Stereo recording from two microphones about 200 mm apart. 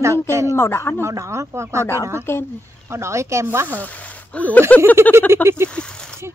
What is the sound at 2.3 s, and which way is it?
Speech, 10° left (ahead or behind).